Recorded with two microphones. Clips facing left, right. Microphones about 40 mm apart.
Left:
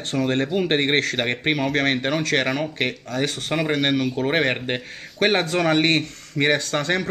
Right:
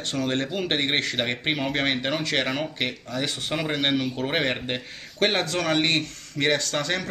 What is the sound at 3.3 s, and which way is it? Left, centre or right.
Speech, left.